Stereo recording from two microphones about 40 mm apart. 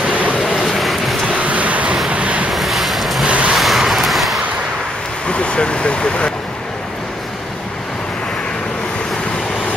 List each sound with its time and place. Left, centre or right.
0.0 s vehicle: right
0.6 s vehicle: centre
1.3 s vehicle: right
2.5 s boat: centre
3.3 s vehicle: right
3.5 s vehicle: centre
5.3 s vehicle: left